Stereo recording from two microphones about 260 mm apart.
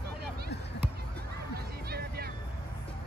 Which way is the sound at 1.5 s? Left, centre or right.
Right.